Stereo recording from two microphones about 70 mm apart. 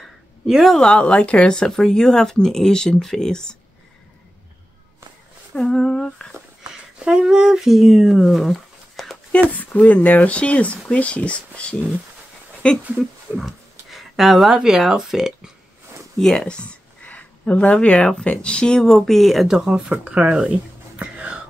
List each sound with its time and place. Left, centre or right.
0.5 s speech: centre
0.7 s speech: centre
5.5 s speech: centre
6.7 s speech: centre
9.3 s speech: left
12.9 s speech: centre
16.2 s speech: centre
19.4 s speech: centre
21.0 s whispering: centre